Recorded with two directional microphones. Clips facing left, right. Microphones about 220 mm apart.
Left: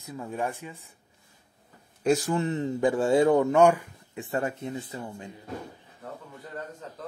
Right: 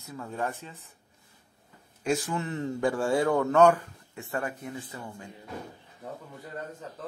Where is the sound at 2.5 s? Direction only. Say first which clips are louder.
Left 1 dB; 20° left (ahead or behind).